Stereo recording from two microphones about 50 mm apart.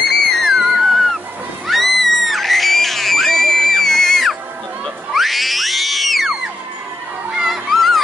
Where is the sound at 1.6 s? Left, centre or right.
Centre.